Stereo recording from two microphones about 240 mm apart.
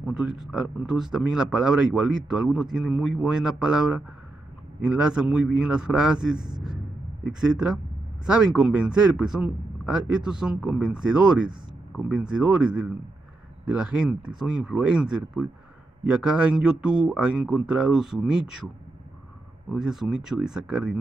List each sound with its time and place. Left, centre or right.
0.0 s speech: centre
19.7 s speech: centre